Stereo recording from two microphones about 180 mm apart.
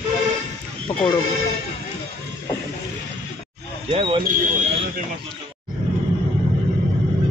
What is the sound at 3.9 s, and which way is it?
Speech, 30° right (ahead or behind).